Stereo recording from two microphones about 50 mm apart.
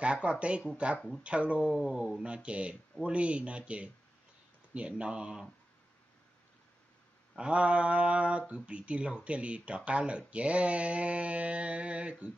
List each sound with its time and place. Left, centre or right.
0.0 s speech: right
7.3 s speech: right